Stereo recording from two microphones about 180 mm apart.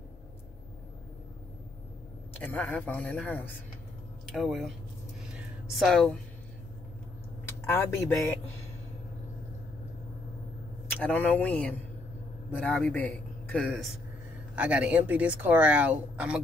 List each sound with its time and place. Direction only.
2.3 s a man's voice: 10° left (ahead or behind)
5.3 s a sound: centre (ahead or behind)
7.6 s a man's voice: 15° left (ahead or behind)
10.9 s a man's voice: 10° left (ahead or behind)
14.5 s a woman's voice: 5° right (ahead or behind)